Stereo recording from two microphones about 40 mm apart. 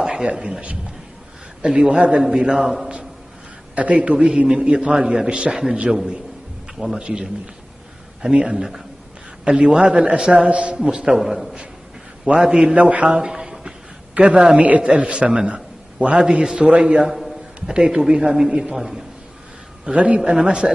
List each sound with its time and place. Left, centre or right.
0.0 s a man's voice: centre
2.4 s a man's voice: centre
3.7 s a man's voice: right
8.5 s a man's voice: centre
9.4 s a man's voice: right
11.1 s a man's voice: centre
12.4 s a man's voice: centre
12.7 s speech: right; by 13.7 s centre
14.2 s a man's voice: right
14.9 s a man's voice: right
16.2 s a man's voice: centre
19.8 s a man's voice: right
20.2 s a man's voice: centre